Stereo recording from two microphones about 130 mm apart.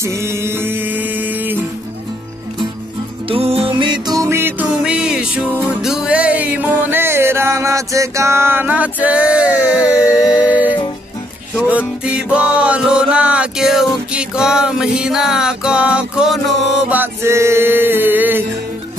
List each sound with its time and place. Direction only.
0.0 s music: 20° right (ahead or behind)
3.3 s music: 50° right (ahead or behind); by 10.1 s 10° right (ahead or behind)
12.0 s music: 10° right (ahead or behind)
16.9 s music: 20° right (ahead or behind)